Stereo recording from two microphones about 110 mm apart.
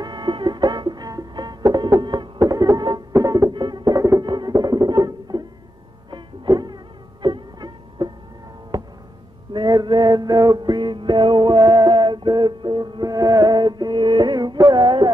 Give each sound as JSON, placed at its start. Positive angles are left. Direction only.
{"t": 0.0, "sound": "music", "side_deg": -40}
{"t": 2.4, "sound": "music", "side_deg": -30}
{"t": 4.2, "sound": "music", "side_deg": -40}
{"t": 9.5, "sound": "music", "side_deg": -40}